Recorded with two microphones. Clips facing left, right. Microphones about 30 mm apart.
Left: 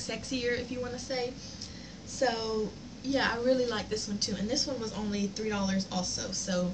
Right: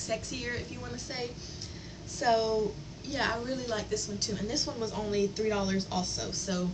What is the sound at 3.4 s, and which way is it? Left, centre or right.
Speech, left.